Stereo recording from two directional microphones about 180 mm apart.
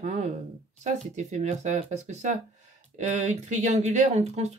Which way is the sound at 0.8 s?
40° right (ahead or behind).